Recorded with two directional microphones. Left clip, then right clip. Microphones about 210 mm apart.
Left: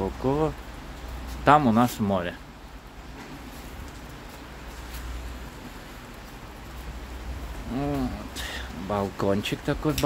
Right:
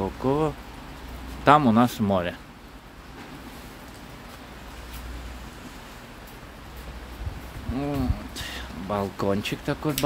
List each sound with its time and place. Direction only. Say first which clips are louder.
0.0 s speech: right 1 dB; 10° right (ahead or behind)
7.7 s speech: even; centre (ahead or behind)